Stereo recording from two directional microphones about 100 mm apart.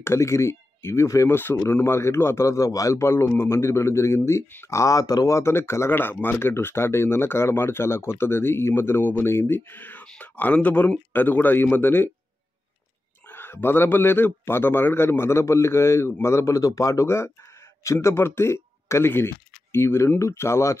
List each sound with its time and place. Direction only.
0.0 s speech: 25° left (ahead or behind)
13.3 s speech: 20° left (ahead or behind)